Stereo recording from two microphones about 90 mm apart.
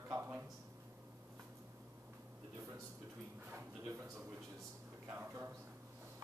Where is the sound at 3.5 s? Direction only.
25° right (ahead or behind).